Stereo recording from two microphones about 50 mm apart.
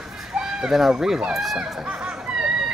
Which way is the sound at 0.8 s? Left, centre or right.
Centre.